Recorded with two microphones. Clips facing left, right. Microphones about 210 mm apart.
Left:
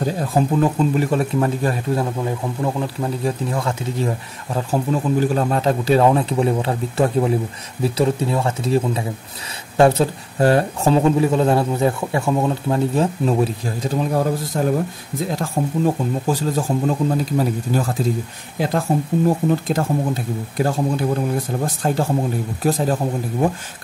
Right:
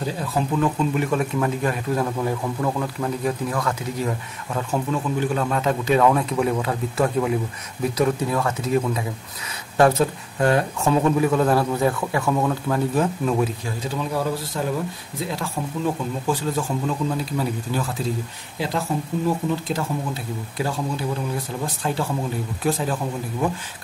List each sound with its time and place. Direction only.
0.5 s speech: 35° left (ahead or behind)
13.8 s speech: 45° left (ahead or behind)